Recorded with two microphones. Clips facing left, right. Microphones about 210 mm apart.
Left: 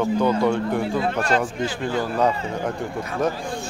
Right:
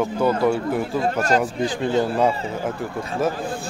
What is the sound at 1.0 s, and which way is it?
Speech, 40° right (ahead or behind).